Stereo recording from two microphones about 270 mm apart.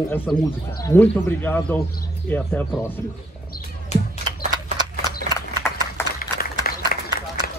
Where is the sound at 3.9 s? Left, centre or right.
Left.